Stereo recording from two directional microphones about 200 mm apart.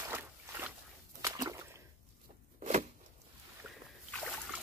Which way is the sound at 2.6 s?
40° right (ahead or behind).